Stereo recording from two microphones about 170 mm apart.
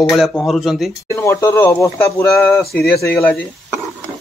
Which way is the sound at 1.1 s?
15° left (ahead or behind).